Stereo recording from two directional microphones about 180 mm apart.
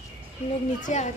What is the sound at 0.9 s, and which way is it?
Speech, 40° left (ahead or behind).